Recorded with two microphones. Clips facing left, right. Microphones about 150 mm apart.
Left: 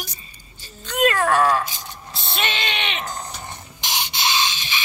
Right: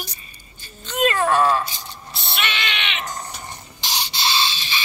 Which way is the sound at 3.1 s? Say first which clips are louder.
Even; 10° left (ahead or behind).